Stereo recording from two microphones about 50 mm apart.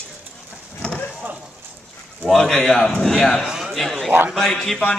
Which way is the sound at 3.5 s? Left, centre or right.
Centre.